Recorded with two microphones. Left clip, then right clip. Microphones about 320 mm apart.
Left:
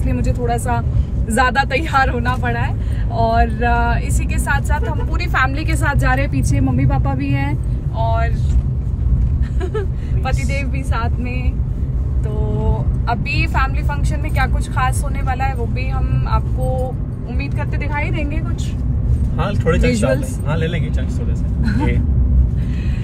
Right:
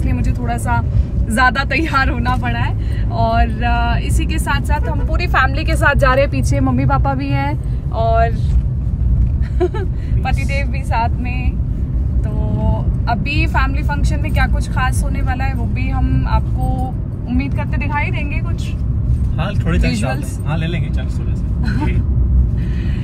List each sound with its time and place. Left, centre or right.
0.1 s speech: centre
9.6 s vehicle: centre
13.0 s speech: centre
19.8 s speech: centre